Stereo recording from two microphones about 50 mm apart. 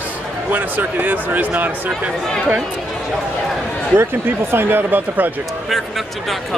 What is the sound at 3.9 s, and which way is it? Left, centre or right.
Speech, right.